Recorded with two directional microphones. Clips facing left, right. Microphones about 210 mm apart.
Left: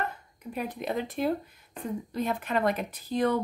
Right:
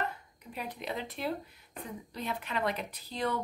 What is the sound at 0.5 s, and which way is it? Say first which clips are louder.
Speech: left 6 dB; 50° left (ahead or behind).